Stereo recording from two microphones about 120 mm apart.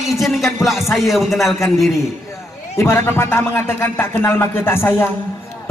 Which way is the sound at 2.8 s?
20° left (ahead or behind).